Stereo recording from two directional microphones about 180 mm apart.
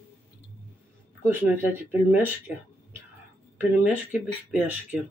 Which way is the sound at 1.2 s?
10° right (ahead or behind).